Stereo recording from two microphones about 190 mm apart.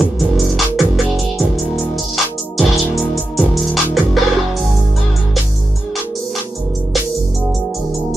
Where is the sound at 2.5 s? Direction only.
Centre (ahead or behind).